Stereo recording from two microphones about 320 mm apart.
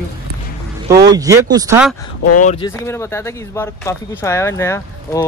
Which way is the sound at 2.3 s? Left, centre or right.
Left.